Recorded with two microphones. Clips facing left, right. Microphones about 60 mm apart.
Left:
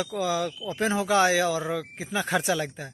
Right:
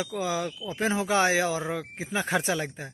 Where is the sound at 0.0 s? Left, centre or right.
Right.